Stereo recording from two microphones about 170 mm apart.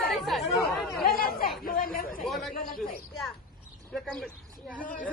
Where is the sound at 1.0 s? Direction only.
60° left (ahead or behind).